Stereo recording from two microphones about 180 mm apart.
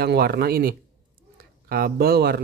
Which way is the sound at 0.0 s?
60° right (ahead or behind).